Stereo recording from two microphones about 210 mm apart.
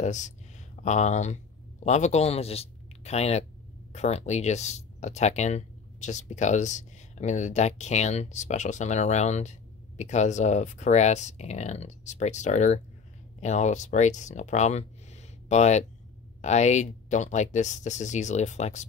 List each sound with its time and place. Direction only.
0.0 s speech: 35° left (ahead or behind)